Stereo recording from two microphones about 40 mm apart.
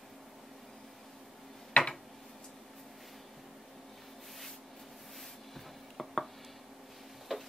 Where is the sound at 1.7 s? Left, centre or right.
Left.